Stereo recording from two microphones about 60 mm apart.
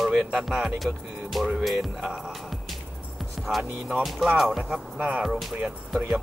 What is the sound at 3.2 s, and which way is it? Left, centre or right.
Speech, centre.